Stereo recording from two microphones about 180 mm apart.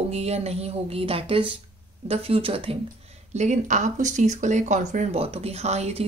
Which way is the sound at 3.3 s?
40° right (ahead or behind).